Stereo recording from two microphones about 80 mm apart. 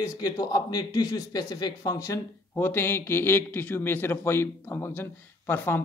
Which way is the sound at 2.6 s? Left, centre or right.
Left.